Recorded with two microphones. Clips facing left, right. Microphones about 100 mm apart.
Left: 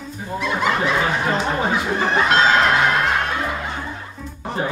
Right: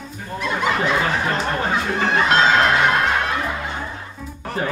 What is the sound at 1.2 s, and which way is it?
Music, 5° left (ahead or behind).